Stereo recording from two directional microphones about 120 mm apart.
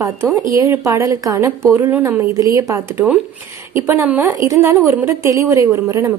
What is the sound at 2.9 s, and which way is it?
A woman's voice, 10° right (ahead or behind).